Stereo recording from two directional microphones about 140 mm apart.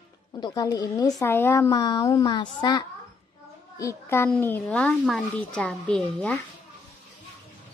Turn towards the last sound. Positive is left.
turn(degrees=5)  # may be behind; listen again after turning